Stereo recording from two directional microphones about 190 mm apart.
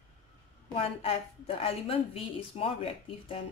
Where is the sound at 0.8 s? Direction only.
30° left (ahead or behind).